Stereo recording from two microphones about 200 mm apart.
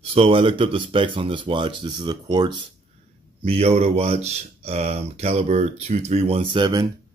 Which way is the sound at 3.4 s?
30° right (ahead or behind).